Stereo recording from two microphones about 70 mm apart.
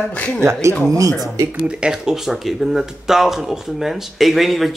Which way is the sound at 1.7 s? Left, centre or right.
Centre.